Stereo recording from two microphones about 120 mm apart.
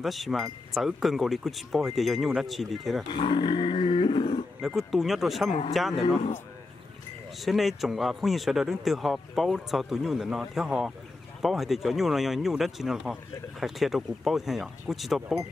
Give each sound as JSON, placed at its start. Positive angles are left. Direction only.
{"t": 0.0, "sound": "speech", "side_deg": 0}
{"t": 3.1, "sound": "roar", "side_deg": 40}
{"t": 4.6, "sound": "speech", "side_deg": -5}
{"t": 7.3, "sound": "speech", "side_deg": 0}